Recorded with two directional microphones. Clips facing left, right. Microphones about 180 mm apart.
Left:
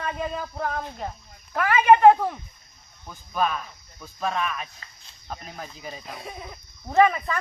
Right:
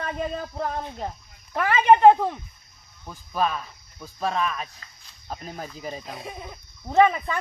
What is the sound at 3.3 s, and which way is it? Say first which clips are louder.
Speech: even; 30° right (ahead or behind).